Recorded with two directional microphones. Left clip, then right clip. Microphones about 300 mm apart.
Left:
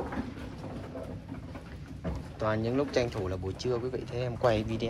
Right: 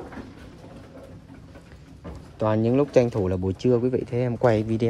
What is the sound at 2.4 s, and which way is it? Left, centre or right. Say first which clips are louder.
Speech: right 8 dB; right.